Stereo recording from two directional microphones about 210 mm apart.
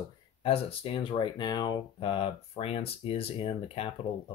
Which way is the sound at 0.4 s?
25° left (ahead or behind).